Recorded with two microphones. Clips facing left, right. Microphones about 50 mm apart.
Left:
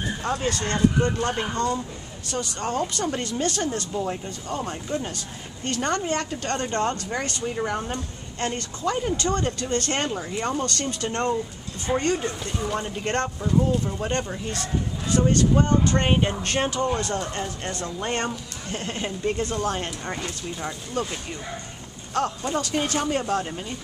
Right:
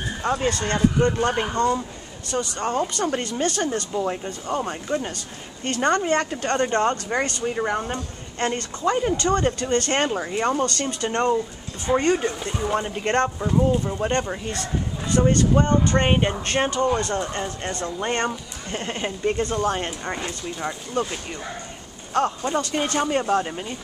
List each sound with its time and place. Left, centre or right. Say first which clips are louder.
0.2 s speech: right 5 dB; centre
1.2 s speech: right 4 dB; right